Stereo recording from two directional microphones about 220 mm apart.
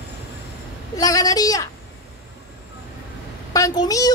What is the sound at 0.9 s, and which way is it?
Speech, 15° left (ahead or behind).